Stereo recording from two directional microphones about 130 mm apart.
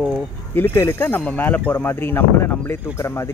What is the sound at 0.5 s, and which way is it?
Speech, 20° left (ahead or behind).